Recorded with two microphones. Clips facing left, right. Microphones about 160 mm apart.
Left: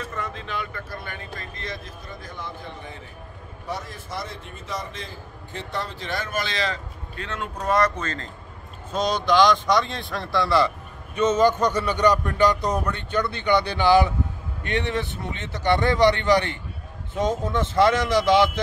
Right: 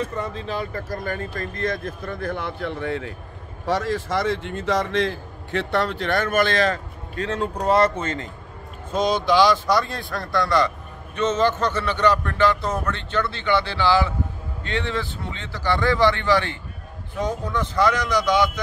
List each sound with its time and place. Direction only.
0.1 s speech: 35° right (ahead or behind); by 3.2 s 75° right (ahead or behind)
3.6 s speech: 90° right; by 7.2 s 50° right (ahead or behind)
7.2 s speech: 35° right (ahead or behind)
8.9 s a man's voice: 10° right (ahead or behind); by 18.6 s 25° left (ahead or behind)